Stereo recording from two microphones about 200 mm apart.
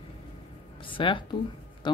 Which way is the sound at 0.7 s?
25° left (ahead or behind).